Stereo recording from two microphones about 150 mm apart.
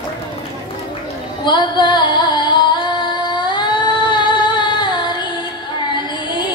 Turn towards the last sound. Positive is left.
turn(degrees=30)  # may be behind; listen again after turning